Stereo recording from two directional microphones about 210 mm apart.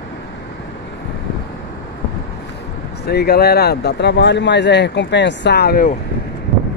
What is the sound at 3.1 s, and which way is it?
Speech, 50° left (ahead or behind).